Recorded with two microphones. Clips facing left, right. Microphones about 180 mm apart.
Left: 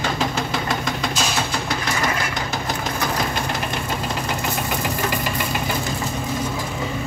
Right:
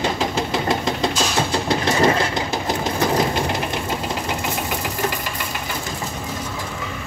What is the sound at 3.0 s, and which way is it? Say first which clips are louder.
Sewing machine: right 6 dB; 30° right (ahead or behind).